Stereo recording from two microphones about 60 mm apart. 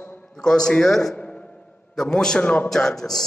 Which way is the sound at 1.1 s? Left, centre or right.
Left.